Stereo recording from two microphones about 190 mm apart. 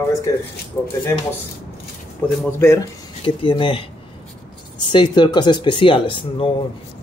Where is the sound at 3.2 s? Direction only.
25° left (ahead or behind).